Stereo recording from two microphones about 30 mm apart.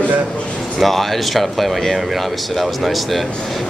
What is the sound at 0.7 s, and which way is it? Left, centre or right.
Speech, centre.